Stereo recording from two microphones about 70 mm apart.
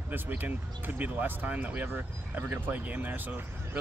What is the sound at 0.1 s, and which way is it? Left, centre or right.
Speech, right.